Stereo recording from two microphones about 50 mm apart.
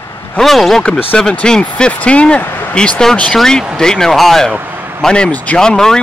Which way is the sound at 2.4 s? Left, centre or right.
Left.